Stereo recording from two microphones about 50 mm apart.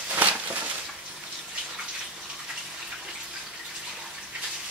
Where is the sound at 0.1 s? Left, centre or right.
Right.